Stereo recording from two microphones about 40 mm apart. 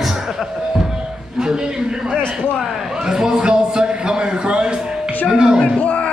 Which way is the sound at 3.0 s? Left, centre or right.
Centre.